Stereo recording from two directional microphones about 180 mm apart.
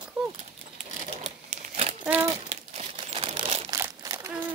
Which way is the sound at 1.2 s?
40° right (ahead or behind).